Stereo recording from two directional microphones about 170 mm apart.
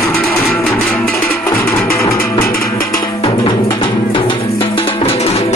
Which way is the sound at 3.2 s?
25° left (ahead or behind).